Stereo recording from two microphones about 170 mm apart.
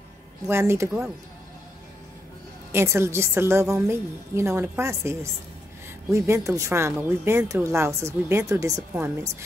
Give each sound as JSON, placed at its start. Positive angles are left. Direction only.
{"t": 0.5, "sound": "speech", "side_deg": -15}
{"t": 2.7, "sound": "speech", "side_deg": -15}